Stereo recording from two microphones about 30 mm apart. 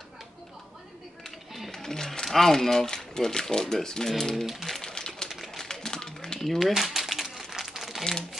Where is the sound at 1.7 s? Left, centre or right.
Centre.